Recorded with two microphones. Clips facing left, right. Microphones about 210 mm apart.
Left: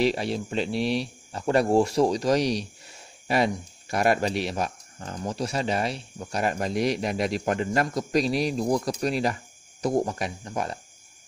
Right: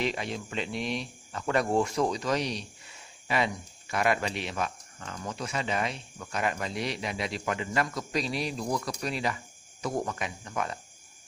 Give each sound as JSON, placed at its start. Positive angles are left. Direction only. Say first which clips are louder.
{"t": 0.0, "sound": "speech", "louder": "left 7 dB", "side_deg": 35}